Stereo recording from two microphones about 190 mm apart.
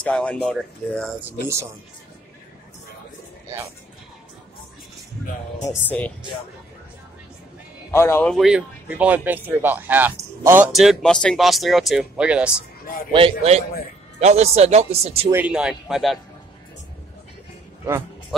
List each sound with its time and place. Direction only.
0.0 s speech: 5° left (ahead or behind)
5.7 s speech: 10° left (ahead or behind)
7.9 s speech: 15° left (ahead or behind); by 10.7 s 10° right (ahead or behind)
10.7 s speech: centre (ahead or behind)
13.1 s a man's voice: 30° right (ahead or behind)
15.3 s speech: 5° right (ahead or behind)